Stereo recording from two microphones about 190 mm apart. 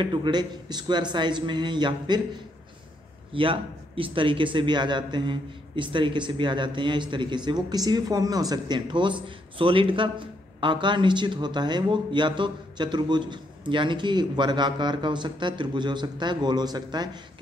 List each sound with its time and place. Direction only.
0.0 s speech: 25° right (ahead or behind)
3.3 s speech: 25° right (ahead or behind)